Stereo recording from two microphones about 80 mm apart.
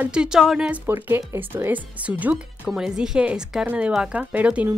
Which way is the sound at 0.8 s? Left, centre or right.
Right.